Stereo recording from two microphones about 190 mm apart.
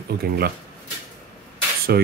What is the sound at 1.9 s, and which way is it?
Speech, 55° right (ahead or behind).